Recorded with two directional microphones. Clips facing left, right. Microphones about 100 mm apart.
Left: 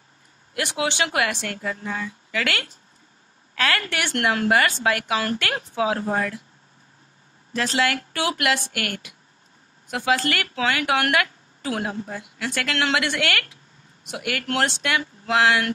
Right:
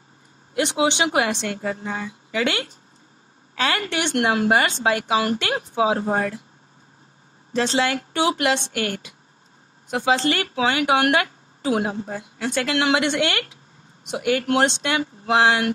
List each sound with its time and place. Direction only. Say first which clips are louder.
0.6 s speech: right 4 dB; 20° right (ahead or behind)
7.5 s speech: right 2 dB; 30° right (ahead or behind)